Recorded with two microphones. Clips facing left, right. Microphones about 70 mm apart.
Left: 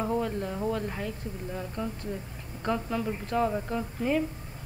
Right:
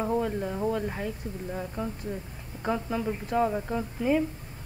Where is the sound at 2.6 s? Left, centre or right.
Centre.